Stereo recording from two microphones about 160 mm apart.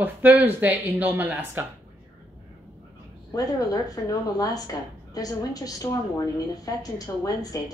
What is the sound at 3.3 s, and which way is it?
A woman's voice, 25° left (ahead or behind).